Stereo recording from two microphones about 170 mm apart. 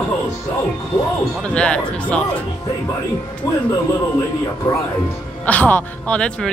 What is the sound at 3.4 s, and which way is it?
Speech, 20° left (ahead or behind).